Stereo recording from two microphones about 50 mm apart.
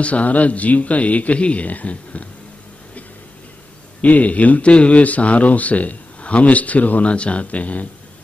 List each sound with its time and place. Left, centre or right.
0.0 s speech: left
4.0 s speech: left